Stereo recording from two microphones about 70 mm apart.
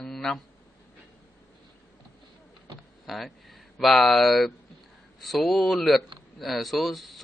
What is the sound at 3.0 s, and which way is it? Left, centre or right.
Speech, centre.